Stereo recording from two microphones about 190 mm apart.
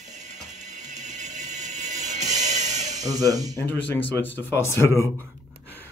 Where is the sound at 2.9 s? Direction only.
20° right (ahead or behind).